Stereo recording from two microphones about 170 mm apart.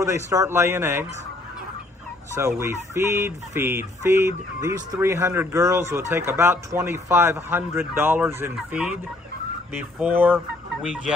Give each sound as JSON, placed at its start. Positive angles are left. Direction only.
{"t": 0.0, "sound": "fowl", "side_deg": -20}
{"t": 2.3, "sound": "fowl", "side_deg": -15}